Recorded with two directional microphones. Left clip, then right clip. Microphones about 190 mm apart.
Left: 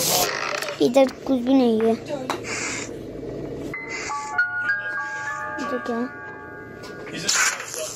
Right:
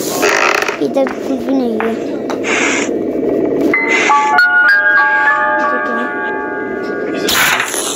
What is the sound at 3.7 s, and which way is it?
Music, 50° right (ahead or behind).